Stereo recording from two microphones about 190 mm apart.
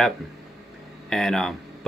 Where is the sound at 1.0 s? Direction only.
Centre (ahead or behind).